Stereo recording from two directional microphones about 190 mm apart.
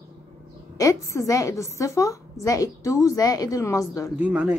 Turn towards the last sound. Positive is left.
turn(degrees=-5)  # may be behind; listen again after turning